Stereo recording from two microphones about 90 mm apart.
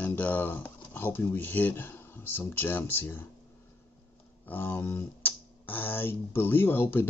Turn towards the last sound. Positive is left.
turn(degrees=25)  # may be behind; listen again after turning